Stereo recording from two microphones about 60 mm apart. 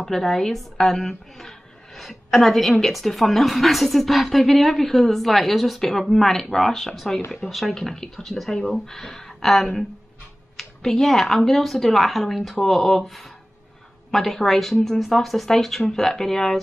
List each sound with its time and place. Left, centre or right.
0.0 s a woman's voice: centre